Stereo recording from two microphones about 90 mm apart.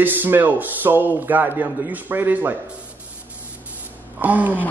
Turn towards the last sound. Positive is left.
turn(degrees=-20)  # may be behind; listen again after turning